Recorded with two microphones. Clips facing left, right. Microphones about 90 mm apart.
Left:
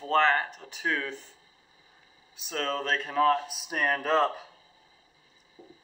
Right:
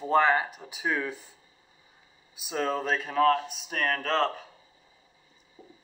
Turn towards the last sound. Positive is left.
turn(degrees=-30)  # may be behind; listen again after turning